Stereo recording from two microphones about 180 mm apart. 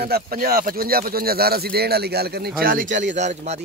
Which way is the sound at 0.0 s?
60° right (ahead or behind).